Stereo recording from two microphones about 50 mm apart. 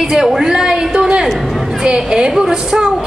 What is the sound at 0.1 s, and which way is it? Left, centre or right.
A woman's voice, centre.